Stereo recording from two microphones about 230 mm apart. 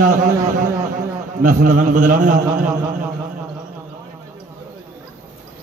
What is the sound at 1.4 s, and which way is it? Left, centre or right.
Speech, right.